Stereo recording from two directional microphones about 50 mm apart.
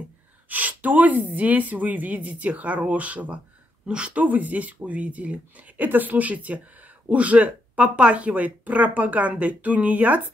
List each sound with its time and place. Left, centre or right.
0.5 s speech: right